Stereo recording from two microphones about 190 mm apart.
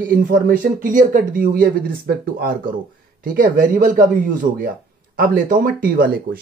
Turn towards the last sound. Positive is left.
turn(degrees=-50)  # may be behind; listen again after turning